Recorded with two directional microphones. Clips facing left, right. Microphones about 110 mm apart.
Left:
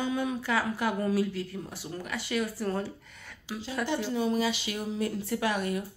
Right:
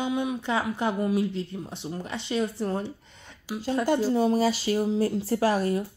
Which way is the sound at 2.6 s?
25° right (ahead or behind).